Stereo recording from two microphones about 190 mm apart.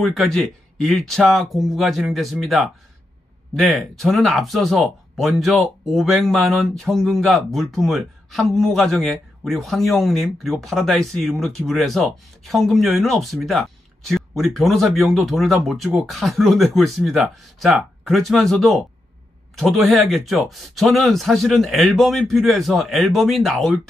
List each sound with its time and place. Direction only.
0.0 s speech: centre (ahead or behind)